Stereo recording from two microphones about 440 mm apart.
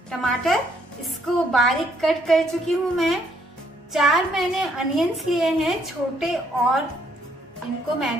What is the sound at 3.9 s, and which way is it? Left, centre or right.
A woman's voice, centre.